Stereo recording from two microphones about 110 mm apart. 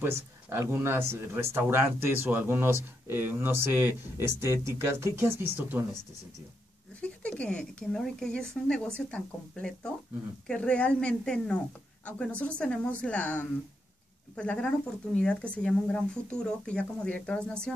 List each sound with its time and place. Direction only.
0.0 s speech: 25° right (ahead or behind)
7.0 s speech: 10° left (ahead or behind)